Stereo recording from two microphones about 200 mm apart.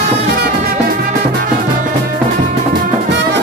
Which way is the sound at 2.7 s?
60° right (ahead or behind).